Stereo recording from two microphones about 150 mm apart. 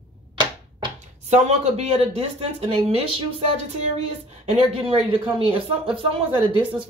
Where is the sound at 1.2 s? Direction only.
50° right (ahead or behind).